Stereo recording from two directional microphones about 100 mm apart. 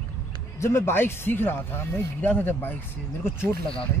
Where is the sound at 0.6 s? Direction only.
25° left (ahead or behind).